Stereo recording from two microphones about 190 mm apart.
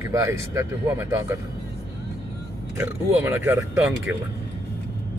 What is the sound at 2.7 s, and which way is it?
Speech, 10° right (ahead or behind).